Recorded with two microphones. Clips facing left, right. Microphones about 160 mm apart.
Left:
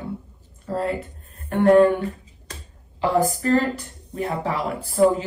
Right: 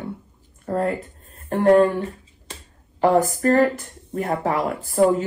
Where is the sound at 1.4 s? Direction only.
35° right (ahead or behind).